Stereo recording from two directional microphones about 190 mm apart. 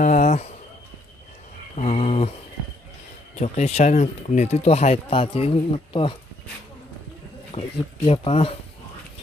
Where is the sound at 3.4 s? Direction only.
35° left (ahead or behind).